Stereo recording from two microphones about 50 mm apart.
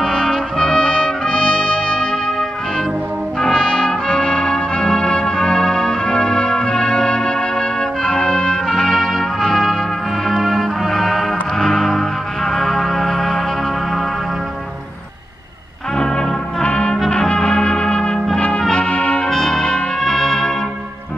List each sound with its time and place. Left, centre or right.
0.0 s brass instrument: centre
3.3 s brass instrument: centre
10.2 s music: centre
16.0 s music: centre
17.2 s brass instrument: centre
19.2 s trumpet: centre